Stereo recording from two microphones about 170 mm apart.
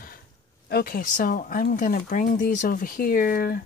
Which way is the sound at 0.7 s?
65° left (ahead or behind).